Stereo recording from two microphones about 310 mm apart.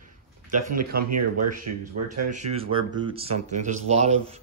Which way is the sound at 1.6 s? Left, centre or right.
Right.